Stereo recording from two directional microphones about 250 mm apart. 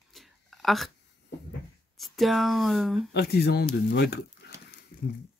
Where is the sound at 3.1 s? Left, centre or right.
Left.